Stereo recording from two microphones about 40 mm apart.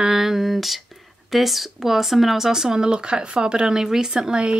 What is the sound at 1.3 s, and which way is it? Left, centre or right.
Speech, centre.